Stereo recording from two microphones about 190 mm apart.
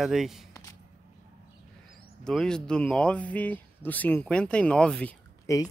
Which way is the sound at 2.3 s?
5° left (ahead or behind).